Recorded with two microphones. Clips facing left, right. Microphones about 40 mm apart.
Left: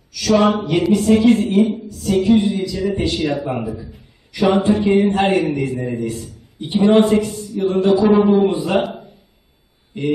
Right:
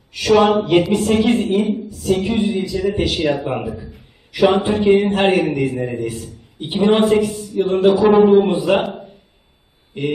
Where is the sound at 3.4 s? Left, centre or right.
Right.